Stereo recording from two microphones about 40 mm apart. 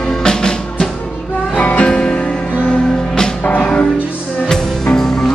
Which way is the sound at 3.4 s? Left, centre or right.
Left.